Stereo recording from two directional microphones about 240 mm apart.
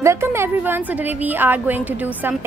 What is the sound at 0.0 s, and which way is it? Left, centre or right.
A woman's voice, centre.